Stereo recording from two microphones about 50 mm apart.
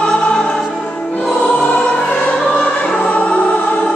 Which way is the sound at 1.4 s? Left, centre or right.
Left.